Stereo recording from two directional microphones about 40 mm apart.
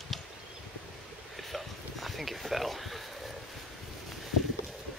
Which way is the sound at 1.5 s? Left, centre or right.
Centre.